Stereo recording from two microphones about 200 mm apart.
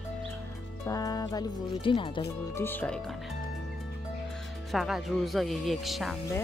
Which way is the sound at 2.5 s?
10° left (ahead or behind).